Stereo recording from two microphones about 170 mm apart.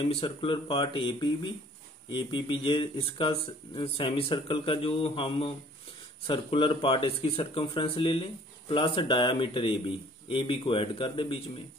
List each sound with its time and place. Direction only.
0.0 s speech: 35° left (ahead or behind)